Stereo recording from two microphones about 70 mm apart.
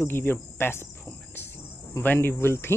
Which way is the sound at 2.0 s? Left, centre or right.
Left.